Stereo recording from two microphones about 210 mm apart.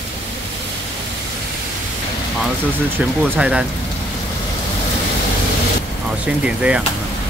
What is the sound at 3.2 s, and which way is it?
Speech, 5° right (ahead or behind).